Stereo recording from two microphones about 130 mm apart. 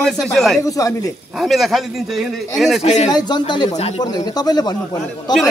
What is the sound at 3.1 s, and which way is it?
Speech, 35° left (ahead or behind).